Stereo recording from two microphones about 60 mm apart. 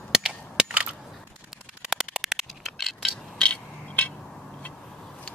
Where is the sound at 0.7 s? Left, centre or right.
Right.